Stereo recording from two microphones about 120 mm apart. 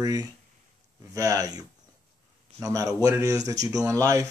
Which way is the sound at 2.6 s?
25° right (ahead or behind).